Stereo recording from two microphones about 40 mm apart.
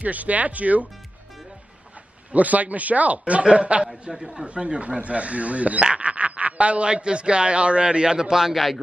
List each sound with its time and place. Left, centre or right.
0.0 s speech: right
2.3 s speech: right; by 8.7 s centre